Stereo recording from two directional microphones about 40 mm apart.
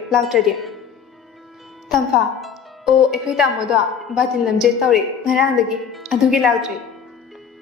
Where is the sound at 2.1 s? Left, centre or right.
Centre.